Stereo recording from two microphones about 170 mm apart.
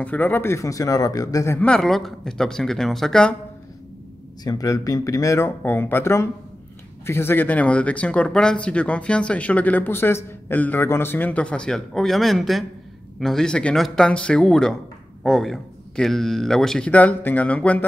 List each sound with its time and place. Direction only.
0.0 s speech: 10° left (ahead or behind)
4.5 s speech: 20° left (ahead or behind)